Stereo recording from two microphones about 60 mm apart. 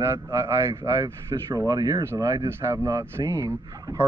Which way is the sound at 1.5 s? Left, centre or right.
Right.